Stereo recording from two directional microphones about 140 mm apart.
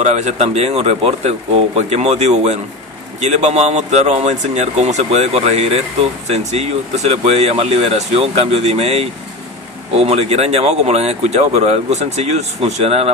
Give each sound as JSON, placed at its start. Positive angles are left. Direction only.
{"t": 0.0, "sound": "speech", "side_deg": -55}